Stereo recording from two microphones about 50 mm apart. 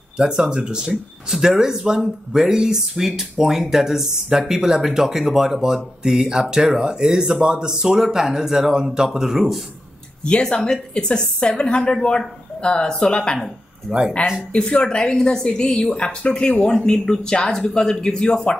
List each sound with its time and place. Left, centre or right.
0.2 s speech: centre
10.2 s a woman's voice: centre
13.4 s speech: centre
14.7 s a woman's voice: centre